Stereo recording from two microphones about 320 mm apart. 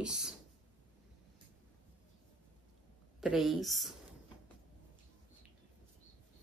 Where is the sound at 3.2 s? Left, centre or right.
Centre.